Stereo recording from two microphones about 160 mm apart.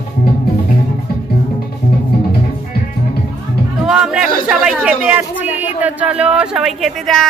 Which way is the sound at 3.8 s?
5° right (ahead or behind).